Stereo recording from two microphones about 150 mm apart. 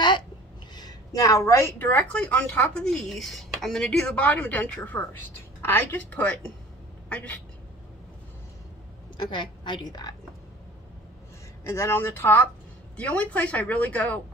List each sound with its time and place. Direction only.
0.7 s a woman's voice: 25° left (ahead or behind)
9.1 s a woman's voice: 30° left (ahead or behind)
11.6 s a woman's voice: 20° left (ahead or behind)